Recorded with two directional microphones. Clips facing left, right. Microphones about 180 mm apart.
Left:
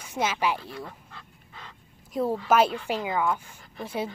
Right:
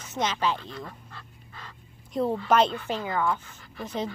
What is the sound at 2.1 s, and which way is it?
Speech, 5° left (ahead or behind).